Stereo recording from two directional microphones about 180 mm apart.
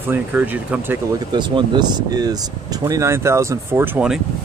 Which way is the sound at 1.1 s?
25° right (ahead or behind).